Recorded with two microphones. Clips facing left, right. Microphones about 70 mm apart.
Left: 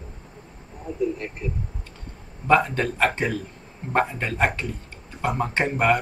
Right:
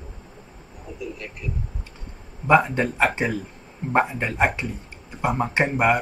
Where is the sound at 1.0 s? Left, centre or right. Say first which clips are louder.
Left 8 dB; left.